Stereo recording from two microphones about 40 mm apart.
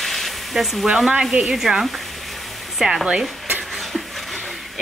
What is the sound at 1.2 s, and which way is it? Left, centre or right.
Speech, centre.